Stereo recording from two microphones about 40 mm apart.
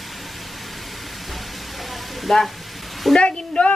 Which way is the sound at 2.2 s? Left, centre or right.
Centre.